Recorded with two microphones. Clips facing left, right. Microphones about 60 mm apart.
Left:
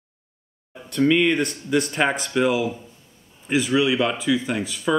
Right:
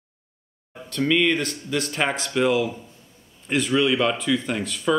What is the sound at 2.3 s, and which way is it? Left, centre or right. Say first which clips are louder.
Speech: even; centre.